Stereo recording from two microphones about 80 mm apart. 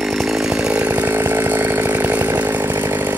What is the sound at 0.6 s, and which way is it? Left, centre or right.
Chainsaw, centre.